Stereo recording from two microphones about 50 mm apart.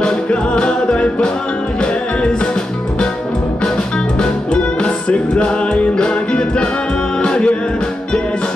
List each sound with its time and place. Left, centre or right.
0.0 s music: centre
3.6 s music: centre